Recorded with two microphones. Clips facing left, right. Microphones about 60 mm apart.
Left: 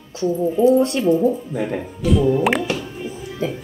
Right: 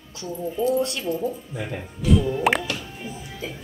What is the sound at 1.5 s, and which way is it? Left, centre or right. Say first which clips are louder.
Speech: left 8 dB; left.